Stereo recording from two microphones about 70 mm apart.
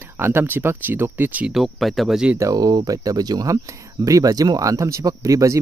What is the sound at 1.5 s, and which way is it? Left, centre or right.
Speech, centre.